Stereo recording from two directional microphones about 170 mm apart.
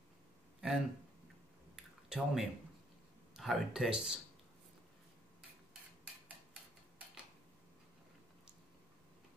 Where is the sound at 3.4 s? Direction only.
Centre (ahead or behind).